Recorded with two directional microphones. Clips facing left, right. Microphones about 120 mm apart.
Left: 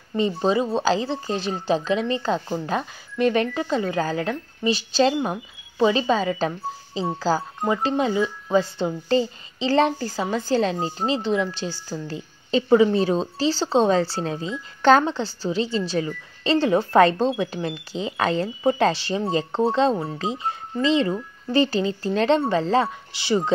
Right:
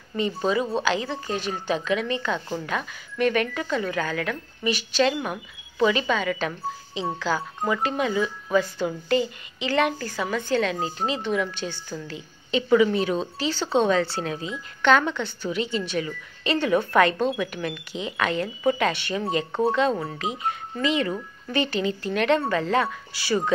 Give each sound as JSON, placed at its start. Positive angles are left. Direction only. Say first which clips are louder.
{"t": 0.4, "sound": "a woman's voice", "louder": "left 1 dB", "side_deg": 30}